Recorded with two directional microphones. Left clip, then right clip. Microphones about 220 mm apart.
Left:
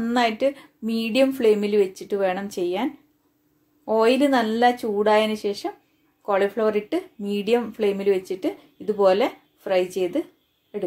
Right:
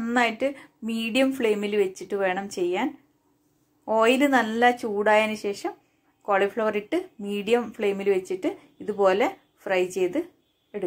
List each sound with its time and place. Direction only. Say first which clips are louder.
0.0 s speech: left 2 dB; centre (ahead or behind)